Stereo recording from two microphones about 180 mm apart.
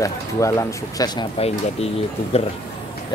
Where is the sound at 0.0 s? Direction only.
15° left (ahead or behind).